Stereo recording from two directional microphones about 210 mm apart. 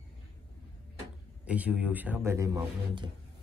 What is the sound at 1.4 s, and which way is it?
A man's voice, 5° right (ahead or behind).